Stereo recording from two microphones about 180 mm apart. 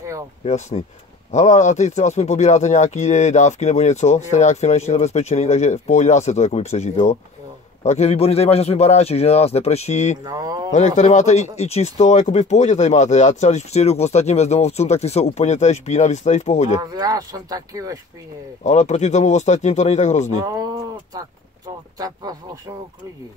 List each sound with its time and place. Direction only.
0.5 s speech: 40° left (ahead or behind)
10.2 s speech: 20° right (ahead or behind)
11.0 s speech: 40° left (ahead or behind)
16.8 s speech: 20° right (ahead or behind)
18.6 s speech: 40° left (ahead or behind)
20.4 s speech: 20° right (ahead or behind)